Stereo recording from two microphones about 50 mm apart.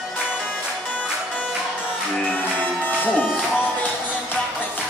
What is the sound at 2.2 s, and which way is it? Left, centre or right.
Music, left.